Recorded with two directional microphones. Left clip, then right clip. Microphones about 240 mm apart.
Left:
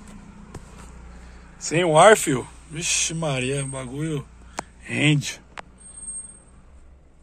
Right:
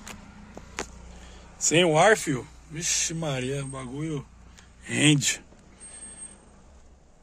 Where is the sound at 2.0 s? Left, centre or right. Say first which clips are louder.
Left 6 dB; centre.